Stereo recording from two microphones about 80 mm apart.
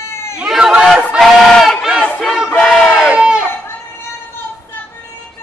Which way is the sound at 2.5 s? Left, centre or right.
Centre.